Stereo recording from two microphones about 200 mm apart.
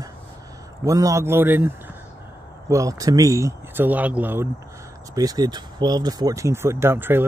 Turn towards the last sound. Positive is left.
turn(degrees=-10)  # may be behind; listen again after turning